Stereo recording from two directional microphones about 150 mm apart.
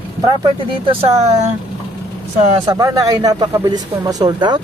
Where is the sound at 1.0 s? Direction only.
45° right (ahead or behind).